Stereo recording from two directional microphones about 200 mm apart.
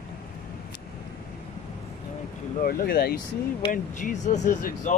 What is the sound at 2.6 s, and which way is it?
Speech, 50° left (ahead or behind).